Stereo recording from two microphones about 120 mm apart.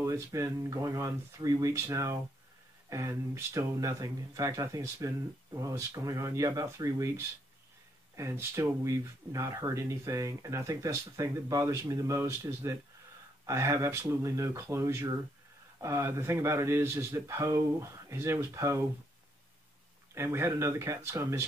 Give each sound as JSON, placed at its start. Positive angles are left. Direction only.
{"t": 0.0, "sound": "speech", "side_deg": -25}
{"t": 20.2, "sound": "speech", "side_deg": -25}